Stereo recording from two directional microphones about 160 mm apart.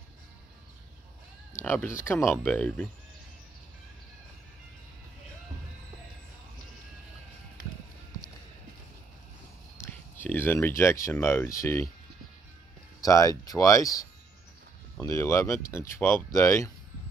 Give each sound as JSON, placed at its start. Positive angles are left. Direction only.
{"t": 1.6, "sound": "speech", "side_deg": 15}
{"t": 9.8, "sound": "speech", "side_deg": 15}
{"t": 13.0, "sound": "speech", "side_deg": 20}